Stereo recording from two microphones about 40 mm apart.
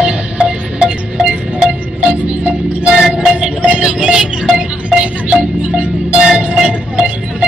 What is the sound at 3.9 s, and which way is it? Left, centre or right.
Music, right.